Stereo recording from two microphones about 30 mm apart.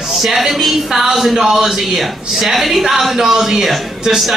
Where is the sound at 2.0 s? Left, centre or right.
Centre.